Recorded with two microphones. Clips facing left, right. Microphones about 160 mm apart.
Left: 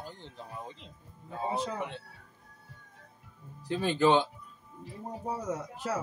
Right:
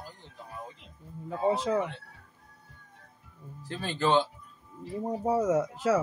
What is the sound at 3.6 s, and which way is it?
Speech, 15° left (ahead or behind).